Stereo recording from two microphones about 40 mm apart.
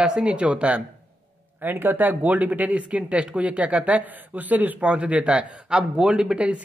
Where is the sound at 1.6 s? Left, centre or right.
Right.